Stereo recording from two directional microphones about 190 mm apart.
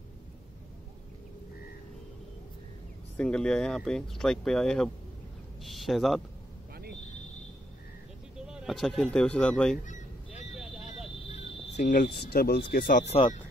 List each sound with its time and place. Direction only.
3.2 s speech: 5° left (ahead or behind)
8.4 s speech: 5° right (ahead or behind)
11.7 s speech: 40° left (ahead or behind)
13.0 s speech: 35° left (ahead or behind)